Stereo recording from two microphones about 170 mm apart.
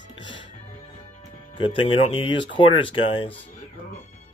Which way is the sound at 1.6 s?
30° left (ahead or behind).